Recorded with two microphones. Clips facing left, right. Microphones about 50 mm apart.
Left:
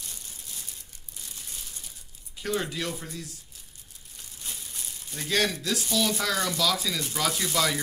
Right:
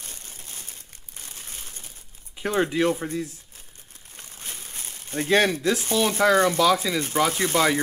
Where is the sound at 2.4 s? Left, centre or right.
Right.